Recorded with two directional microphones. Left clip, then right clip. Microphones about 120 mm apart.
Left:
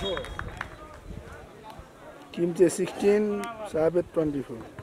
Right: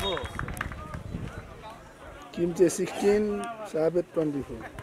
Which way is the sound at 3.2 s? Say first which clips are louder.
Left 1 dB; 35° left (ahead or behind).